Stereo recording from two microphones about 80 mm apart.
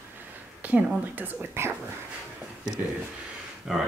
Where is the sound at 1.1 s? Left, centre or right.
Right.